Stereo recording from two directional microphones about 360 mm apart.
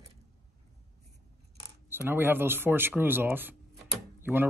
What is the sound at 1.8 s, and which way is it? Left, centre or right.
Speech, centre.